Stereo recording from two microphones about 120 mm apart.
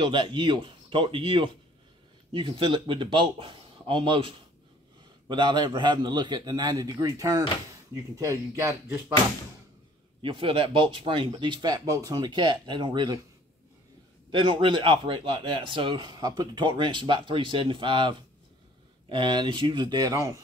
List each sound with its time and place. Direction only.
0.0 s a man's voice: 45° right (ahead or behind); by 9.0 s 20° right (ahead or behind)
10.2 s speech: 45° right (ahead or behind)
14.3 s a man's voice: 45° right (ahead or behind); by 20.4 s 30° right (ahead or behind)